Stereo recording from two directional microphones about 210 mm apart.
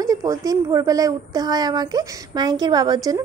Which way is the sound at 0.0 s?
15° right (ahead or behind).